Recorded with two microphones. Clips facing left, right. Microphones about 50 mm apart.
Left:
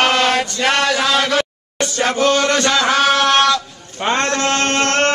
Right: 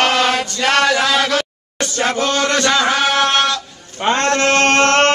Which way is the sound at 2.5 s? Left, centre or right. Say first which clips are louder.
Even; right.